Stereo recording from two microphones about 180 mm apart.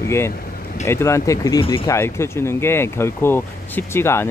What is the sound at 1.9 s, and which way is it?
Speech, 15° left (ahead or behind).